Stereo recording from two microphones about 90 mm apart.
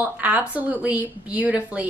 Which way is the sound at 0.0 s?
15° right (ahead or behind).